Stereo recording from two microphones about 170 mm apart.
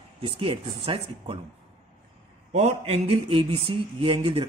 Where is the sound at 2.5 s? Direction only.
40° right (ahead or behind).